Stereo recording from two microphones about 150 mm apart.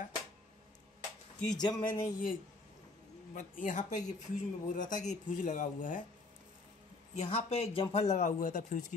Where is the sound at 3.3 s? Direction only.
60° left (ahead or behind).